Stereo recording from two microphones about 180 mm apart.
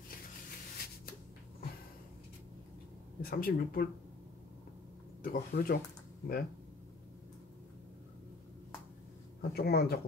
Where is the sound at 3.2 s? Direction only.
55° left (ahead or behind).